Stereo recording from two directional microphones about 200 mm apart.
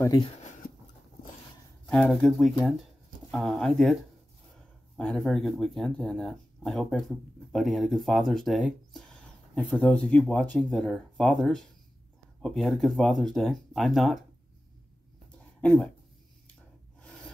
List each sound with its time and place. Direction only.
0.0 s speech: 20° left (ahead or behind)
0.4 s writing: 45° left (ahead or behind)
1.9 s speech: 5° left (ahead or behind)
15.6 s speech: 10° left (ahead or behind)